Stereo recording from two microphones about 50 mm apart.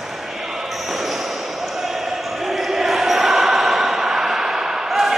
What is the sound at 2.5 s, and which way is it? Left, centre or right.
Basketball bounce, centre.